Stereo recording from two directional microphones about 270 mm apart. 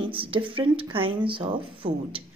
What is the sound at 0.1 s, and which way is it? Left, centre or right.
Speech, centre.